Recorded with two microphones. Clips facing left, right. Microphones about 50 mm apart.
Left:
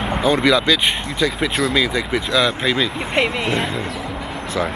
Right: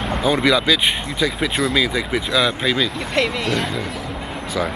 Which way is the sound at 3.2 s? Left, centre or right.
Centre.